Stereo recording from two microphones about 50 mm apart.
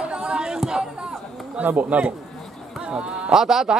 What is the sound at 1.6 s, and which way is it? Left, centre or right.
Speech, right.